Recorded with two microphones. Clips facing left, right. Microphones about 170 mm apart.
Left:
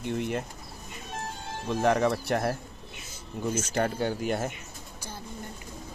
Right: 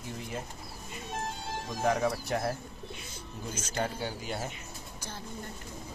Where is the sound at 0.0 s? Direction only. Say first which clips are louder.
Left 10 dB; 70° left (ahead or behind).